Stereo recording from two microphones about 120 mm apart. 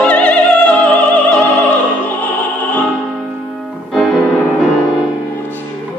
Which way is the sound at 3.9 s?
Centre (ahead or behind).